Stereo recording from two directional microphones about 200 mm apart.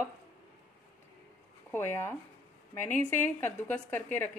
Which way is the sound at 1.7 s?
10° left (ahead or behind).